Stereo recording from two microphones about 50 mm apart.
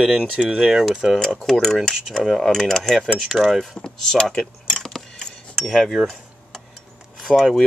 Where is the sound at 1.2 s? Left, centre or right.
Centre.